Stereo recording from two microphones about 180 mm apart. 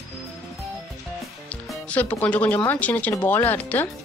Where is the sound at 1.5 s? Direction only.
10° left (ahead or behind).